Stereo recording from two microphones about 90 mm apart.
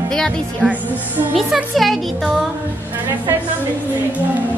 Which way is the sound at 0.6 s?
10° left (ahead or behind).